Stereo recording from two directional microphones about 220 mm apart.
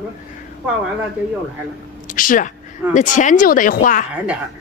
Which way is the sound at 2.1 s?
40° left (ahead or behind).